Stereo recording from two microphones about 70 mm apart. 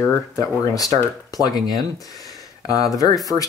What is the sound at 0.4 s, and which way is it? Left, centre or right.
Speech, left.